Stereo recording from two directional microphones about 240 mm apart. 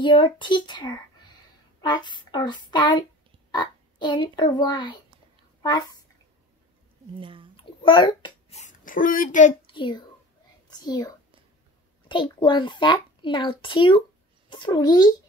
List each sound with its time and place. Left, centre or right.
0.0 s a child's voice: centre
7.2 s speech: right
7.5 s a child's voice: left